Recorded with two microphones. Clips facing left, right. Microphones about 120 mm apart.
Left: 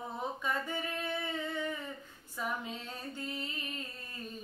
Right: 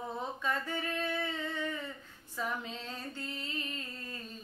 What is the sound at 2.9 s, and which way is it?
Music, 15° left (ahead or behind).